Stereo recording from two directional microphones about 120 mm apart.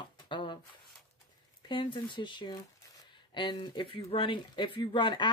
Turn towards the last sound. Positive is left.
turn(degrees=40)  # may be behind; listen again after turning